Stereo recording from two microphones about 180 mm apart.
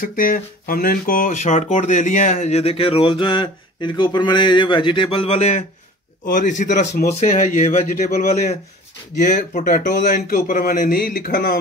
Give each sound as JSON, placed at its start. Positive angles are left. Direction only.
{"t": 0.0, "sound": "speech", "side_deg": 50}
{"t": 6.2, "sound": "speech", "side_deg": 50}
{"t": 6.9, "sound": "a man's voice", "side_deg": 60}
{"t": 7.2, "sound": "speech", "side_deg": 40}